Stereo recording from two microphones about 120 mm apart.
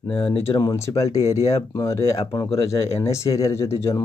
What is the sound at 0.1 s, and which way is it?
Speech, 50° left (ahead or behind).